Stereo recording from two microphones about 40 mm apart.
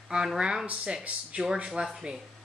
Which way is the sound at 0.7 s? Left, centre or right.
Right.